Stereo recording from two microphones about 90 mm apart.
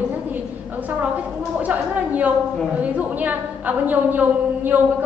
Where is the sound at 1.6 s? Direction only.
15° right (ahead or behind).